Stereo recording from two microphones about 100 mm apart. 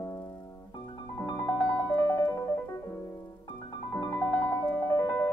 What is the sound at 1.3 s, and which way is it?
Music, 45° left (ahead or behind).